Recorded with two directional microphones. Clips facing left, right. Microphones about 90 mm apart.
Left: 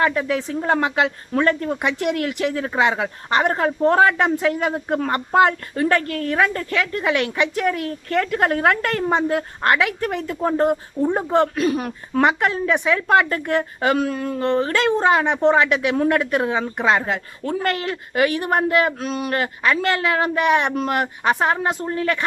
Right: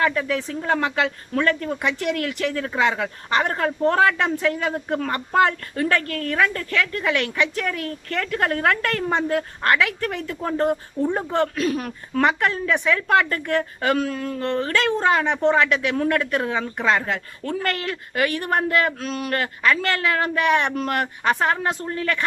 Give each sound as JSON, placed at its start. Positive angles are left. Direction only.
{"t": 0.0, "sound": "a woman's voice", "side_deg": 15}